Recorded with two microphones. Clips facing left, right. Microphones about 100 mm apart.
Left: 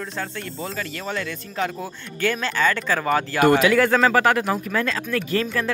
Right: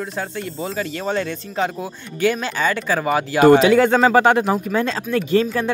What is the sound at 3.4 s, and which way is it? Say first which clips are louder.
Speech: right 5 dB; 25° right (ahead or behind).